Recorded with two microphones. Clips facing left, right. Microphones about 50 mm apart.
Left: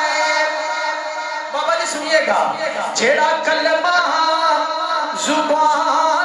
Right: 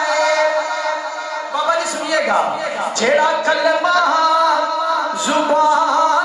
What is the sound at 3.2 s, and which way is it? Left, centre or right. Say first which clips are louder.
Music: right 1 dB; right.